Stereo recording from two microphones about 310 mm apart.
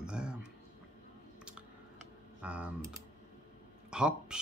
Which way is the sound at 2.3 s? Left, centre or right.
Centre.